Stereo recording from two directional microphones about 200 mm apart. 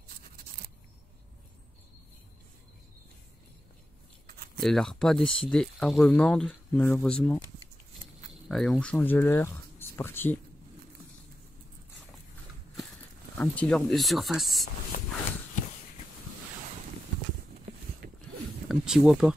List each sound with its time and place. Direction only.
4.6 s speech: centre (ahead or behind)
8.5 s speech: 5° left (ahead or behind)
13.4 s speech: 5° left (ahead or behind)
18.0 s a sound: 50° right (ahead or behind)
18.7 s speech: 5° right (ahead or behind)